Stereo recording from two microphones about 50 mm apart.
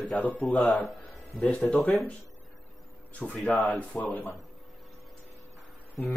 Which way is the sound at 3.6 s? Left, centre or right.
Left.